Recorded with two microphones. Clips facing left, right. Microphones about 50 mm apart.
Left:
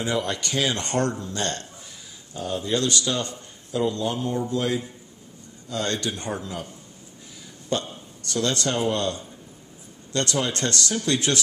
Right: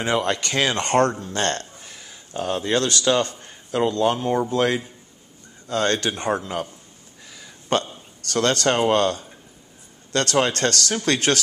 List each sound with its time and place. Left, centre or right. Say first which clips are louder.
0.0 s a man's voice: right 4 dB; right
5.7 s speech: right 5 dB; right
7.7 s speech: right 5 dB; right